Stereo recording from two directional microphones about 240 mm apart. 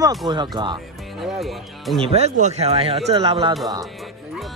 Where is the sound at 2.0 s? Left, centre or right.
Right.